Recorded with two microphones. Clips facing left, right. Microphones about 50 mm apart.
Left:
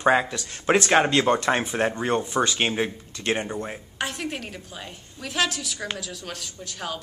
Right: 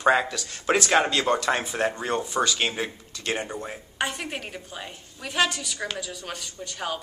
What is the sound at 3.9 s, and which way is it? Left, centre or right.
A woman's voice, centre.